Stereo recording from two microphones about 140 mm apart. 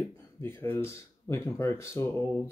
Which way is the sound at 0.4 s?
15° left (ahead or behind).